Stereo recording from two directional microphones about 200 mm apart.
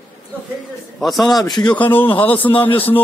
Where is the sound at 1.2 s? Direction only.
20° left (ahead or behind).